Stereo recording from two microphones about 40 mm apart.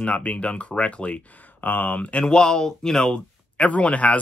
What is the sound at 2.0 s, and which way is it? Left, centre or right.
Speech, left.